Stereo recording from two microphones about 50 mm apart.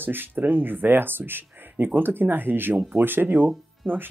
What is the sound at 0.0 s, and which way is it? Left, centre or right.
Speech, right.